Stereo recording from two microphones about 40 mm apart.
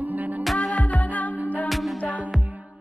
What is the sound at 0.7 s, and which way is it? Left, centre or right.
Music, left.